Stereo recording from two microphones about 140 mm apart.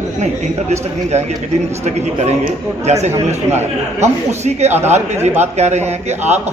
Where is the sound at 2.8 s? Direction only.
50° right (ahead or behind).